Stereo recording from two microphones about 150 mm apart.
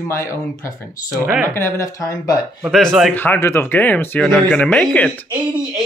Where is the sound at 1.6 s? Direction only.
20° left (ahead or behind).